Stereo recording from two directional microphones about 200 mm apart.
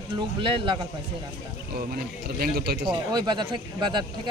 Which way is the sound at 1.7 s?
50° right (ahead or behind).